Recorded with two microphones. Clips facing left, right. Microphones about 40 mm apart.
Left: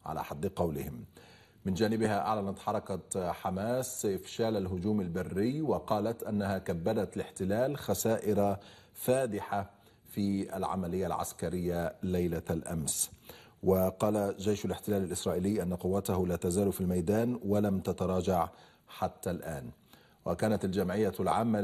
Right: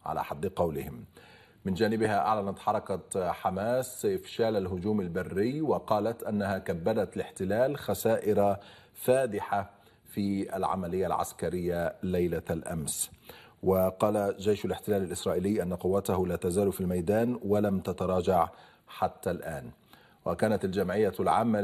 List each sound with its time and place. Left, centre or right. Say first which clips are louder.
0.0 s speech: right 4 dB; centre
1.7 s speech: right 3 dB; centre
16.3 s speech: right 3 dB; centre
16.6 s speech: right 2 dB; centre